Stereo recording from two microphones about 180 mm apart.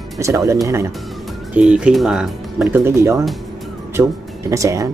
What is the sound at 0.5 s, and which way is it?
Speech, 15° right (ahead or behind).